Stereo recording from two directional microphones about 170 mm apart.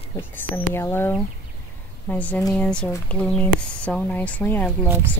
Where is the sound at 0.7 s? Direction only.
15° left (ahead or behind).